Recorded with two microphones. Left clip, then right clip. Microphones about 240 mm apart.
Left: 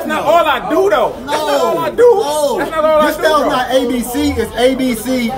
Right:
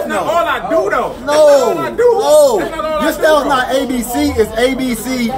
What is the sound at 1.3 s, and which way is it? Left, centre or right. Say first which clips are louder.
Speech: right 10 dB; centre.